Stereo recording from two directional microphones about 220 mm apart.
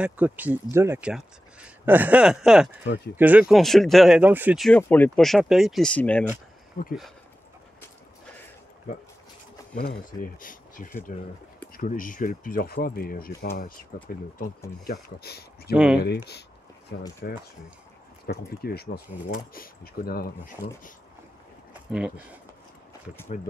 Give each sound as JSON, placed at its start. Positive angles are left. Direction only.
{"t": 0.0, "sound": "speech", "side_deg": -5}
{"t": 6.8, "sound": "speech", "side_deg": 45}
{"t": 9.8, "sound": "speech", "side_deg": 40}
{"t": 14.9, "sound": "speech", "side_deg": 45}
{"t": 15.7, "sound": "speech", "side_deg": -5}
{"t": 16.0, "sound": "speech", "side_deg": 50}
{"t": 18.2, "sound": "speech", "side_deg": 45}
{"t": 21.9, "sound": "speech", "side_deg": -5}